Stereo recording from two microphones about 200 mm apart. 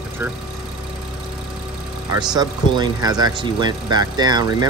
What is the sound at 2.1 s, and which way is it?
Speech, 20° right (ahead or behind).